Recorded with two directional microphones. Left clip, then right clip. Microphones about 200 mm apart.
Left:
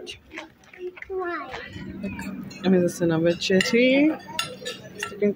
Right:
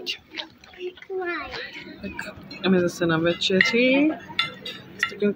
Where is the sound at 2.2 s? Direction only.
10° left (ahead or behind).